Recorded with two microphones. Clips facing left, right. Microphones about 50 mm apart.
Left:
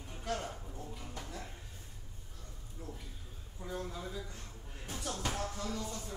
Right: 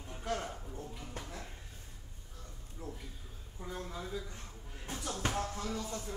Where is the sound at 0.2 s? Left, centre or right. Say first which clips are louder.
Right 1 dB; centre.